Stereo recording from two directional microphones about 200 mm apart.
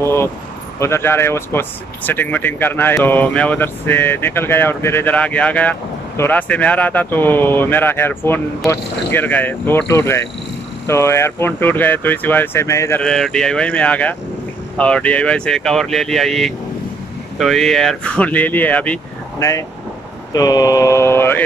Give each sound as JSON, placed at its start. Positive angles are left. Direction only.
{"t": 0.0, "sound": "speech", "side_deg": 10}
{"t": 13.0, "sound": "speech", "side_deg": 5}
{"t": 20.3, "sound": "speech", "side_deg": 20}